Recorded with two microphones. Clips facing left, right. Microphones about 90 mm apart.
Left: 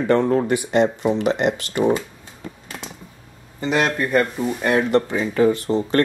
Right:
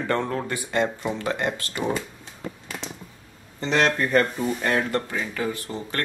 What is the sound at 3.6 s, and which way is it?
Speech, 5° left (ahead or behind).